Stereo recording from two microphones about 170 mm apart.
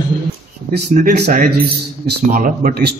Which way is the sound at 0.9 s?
65° right (ahead or behind).